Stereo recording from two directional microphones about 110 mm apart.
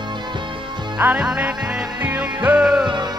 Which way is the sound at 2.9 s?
40° right (ahead or behind).